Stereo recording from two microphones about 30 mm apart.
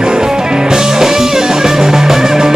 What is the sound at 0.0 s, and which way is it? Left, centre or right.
Music, right.